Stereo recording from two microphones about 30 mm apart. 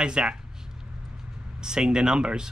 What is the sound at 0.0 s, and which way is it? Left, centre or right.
Speech, right.